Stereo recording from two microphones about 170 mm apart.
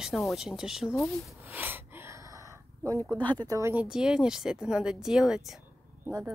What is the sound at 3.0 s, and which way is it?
Speech, 10° left (ahead or behind).